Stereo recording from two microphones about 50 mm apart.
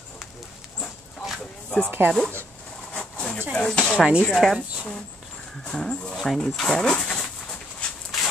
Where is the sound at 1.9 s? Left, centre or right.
Right.